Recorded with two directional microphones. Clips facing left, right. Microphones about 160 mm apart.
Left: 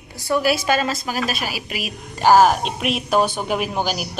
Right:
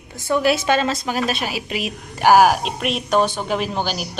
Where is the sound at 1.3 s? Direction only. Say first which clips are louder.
Right 2 dB; 25° right (ahead or behind).